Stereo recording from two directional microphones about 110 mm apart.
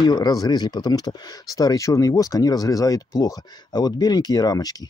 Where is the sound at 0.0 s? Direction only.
40° left (ahead or behind).